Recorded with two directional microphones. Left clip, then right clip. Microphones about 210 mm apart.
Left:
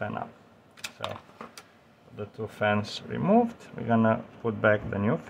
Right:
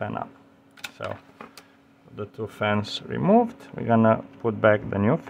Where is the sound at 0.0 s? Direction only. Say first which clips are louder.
Right 3 dB; 25° right (ahead or behind).